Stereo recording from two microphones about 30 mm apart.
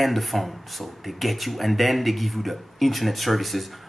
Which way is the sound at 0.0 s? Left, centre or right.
Centre.